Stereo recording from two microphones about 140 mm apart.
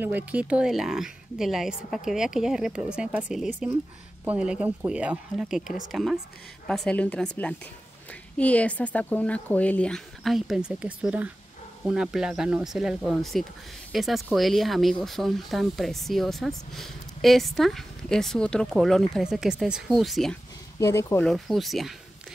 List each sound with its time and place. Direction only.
0.0 s speech: 10° right (ahead or behind)
20.8 s speech: 20° left (ahead or behind)
21.2 s speech: centre (ahead or behind)